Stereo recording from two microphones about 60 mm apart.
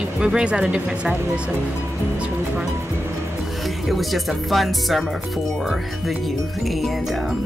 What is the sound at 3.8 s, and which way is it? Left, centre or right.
Speech, centre.